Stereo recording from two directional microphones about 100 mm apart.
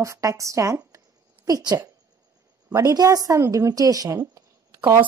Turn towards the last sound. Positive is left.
turn(degrees=-30)  # may be behind; listen again after turning